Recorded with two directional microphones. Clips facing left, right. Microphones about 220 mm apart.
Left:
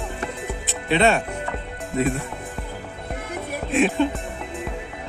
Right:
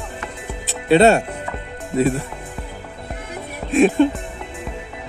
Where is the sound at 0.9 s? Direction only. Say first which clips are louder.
Right 6 dB; 40° right (ahead or behind).